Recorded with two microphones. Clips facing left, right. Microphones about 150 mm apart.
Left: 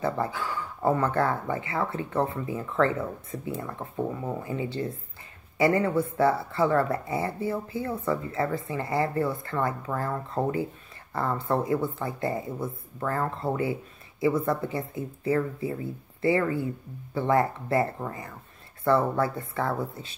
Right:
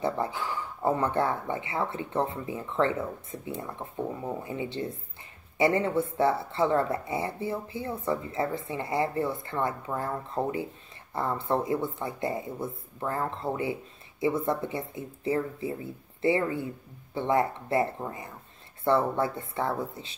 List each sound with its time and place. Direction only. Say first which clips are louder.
0.0 s speech: left 1 dB; 20° right (ahead or behind)
11.1 s speech: left 1 dB; 20° right (ahead or behind)